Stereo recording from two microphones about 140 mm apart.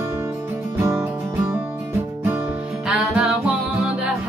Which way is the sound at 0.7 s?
15° right (ahead or behind).